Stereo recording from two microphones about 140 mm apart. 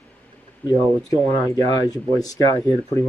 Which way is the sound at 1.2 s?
25° left (ahead or behind).